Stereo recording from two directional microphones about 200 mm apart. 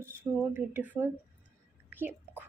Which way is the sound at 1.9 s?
10° right (ahead or behind).